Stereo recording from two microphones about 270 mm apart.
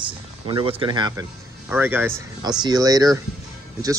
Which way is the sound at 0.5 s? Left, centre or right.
Centre.